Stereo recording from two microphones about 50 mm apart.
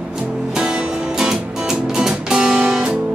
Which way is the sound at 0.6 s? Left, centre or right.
Centre.